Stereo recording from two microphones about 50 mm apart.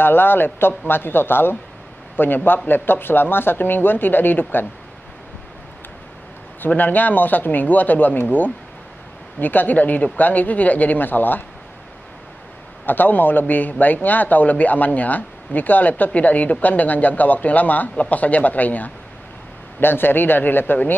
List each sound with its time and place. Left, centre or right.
0.0 s speech: left
6.8 s a man's voice: left
12.8 s a man's voice: left